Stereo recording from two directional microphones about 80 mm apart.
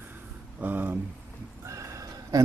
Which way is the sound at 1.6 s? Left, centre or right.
Right.